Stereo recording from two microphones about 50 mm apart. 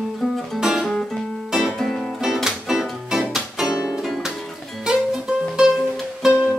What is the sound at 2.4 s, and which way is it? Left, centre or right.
Music, centre.